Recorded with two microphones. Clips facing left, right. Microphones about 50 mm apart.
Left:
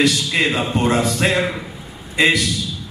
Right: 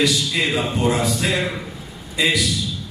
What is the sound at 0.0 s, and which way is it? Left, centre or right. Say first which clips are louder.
A man's voice: left 2 dB; left.